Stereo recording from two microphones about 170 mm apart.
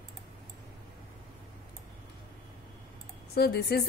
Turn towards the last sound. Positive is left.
turn(degrees=70)  # may be behind; listen again after turning